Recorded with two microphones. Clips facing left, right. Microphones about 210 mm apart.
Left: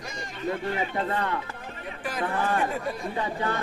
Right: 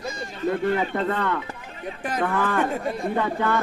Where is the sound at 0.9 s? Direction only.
60° right (ahead or behind).